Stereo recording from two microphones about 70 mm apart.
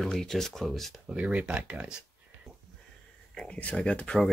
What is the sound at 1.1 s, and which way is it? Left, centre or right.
Speech, centre.